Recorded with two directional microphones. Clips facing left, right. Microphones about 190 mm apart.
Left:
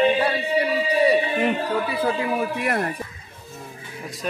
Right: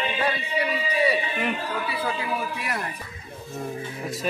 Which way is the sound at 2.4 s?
50° left (ahead or behind).